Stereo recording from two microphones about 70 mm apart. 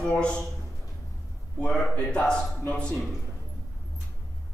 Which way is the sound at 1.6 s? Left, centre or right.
Centre.